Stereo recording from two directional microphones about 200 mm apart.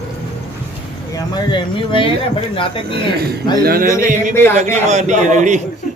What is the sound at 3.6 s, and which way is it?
Speech, 50° right (ahead or behind).